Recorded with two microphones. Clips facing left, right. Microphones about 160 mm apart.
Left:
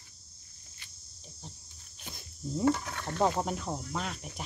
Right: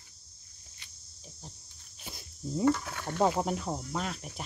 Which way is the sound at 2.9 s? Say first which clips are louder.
Right 1 dB; 10° right (ahead or behind).